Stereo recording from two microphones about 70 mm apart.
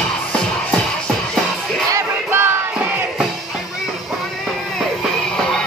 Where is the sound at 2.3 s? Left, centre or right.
Right.